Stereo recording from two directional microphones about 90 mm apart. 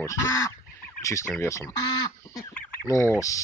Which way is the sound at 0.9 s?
35° left (ahead or behind).